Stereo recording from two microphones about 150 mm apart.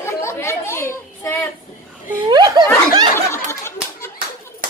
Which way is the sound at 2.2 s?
30° right (ahead or behind).